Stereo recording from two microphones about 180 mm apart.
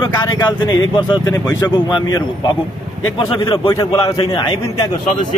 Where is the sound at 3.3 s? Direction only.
25° left (ahead or behind).